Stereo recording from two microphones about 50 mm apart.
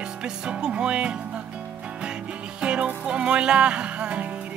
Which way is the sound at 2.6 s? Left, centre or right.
Right.